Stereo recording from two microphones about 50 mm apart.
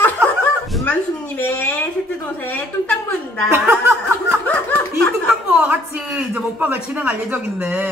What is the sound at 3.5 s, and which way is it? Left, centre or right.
Music, right.